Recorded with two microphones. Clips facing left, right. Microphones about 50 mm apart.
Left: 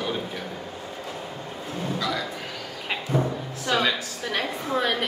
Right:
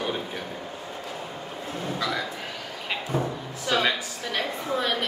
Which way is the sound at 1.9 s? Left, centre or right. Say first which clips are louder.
Even; right.